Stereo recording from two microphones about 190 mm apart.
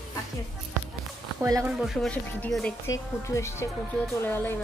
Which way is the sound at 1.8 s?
Centre (ahead or behind).